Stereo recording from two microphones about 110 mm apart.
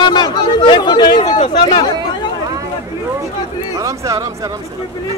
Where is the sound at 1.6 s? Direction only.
45° left (ahead or behind).